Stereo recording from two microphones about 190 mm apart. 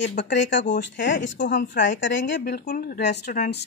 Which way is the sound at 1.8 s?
75° left (ahead or behind).